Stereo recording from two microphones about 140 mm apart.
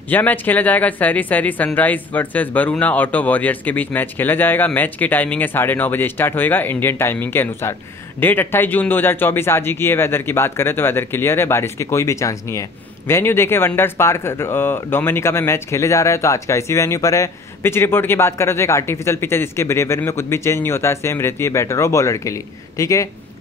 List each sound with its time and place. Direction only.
0.1 s speech: 10° left (ahead or behind)